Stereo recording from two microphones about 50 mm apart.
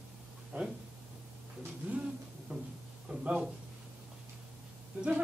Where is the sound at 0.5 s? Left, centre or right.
Right.